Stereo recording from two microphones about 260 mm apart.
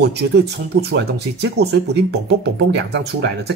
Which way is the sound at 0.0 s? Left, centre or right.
Right.